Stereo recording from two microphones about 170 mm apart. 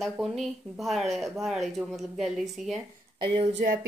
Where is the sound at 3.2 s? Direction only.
30° right (ahead or behind).